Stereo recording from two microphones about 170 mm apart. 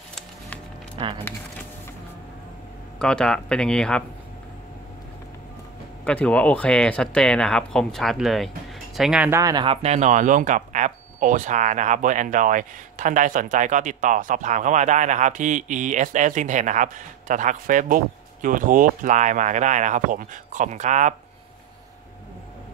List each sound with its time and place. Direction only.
0.9 s speech: 30° right (ahead or behind)
3.0 s speech: 5° left (ahead or behind)
6.0 s speech: 5° left (ahead or behind)
9.4 s speech: 25° right (ahead or behind); by 21.1 s 45° right (ahead or behind)